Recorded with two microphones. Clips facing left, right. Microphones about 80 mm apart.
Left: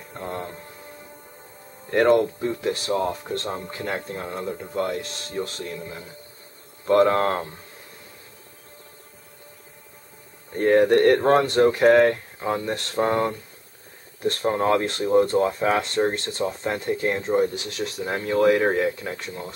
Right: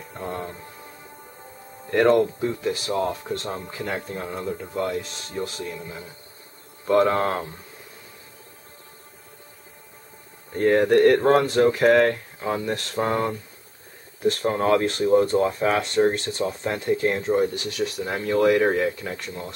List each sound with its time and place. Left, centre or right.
0.1 s music: centre
1.9 s speech: centre
10.6 s speech: centre